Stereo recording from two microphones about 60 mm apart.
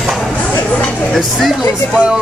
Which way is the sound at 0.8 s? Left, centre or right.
Left.